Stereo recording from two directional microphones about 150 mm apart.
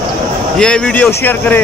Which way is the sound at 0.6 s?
5° left (ahead or behind).